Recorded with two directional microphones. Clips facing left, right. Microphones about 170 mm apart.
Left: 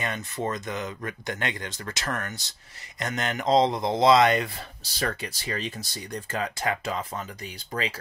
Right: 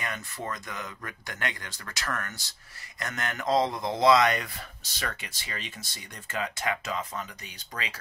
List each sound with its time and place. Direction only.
0.0 s speech: 25° left (ahead or behind)